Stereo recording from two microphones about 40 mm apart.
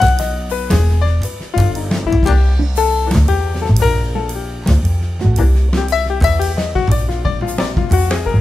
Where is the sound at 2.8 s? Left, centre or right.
Centre.